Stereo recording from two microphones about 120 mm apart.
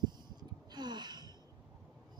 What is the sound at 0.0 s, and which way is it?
Gasp, 35° right (ahead or behind).